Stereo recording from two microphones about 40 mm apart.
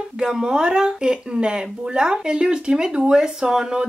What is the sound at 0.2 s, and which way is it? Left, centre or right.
Speech, centre.